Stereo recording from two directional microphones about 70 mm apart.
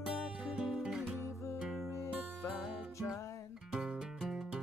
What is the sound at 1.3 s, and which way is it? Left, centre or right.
Music, left.